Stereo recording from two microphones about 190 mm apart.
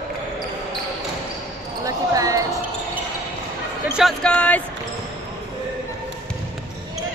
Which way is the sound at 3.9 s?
Centre (ahead or behind).